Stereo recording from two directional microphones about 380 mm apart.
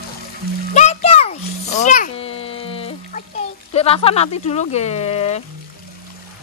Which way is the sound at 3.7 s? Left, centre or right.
Centre.